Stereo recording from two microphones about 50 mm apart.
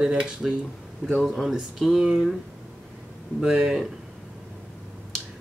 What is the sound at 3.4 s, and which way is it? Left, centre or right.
Speech, centre.